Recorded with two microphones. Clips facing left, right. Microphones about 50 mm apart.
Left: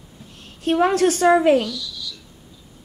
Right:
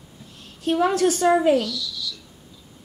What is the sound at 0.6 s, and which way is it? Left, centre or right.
Speech, left.